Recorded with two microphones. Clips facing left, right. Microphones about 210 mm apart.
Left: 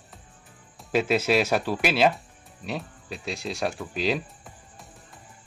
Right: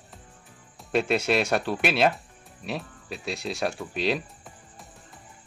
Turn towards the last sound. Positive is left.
turn(degrees=0)  # may be behind; listen again after turning